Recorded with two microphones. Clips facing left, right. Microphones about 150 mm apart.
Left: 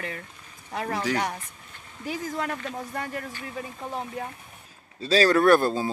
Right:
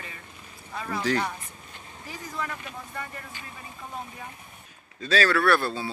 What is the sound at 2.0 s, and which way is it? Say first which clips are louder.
Speech: left 10 dB; 90° left.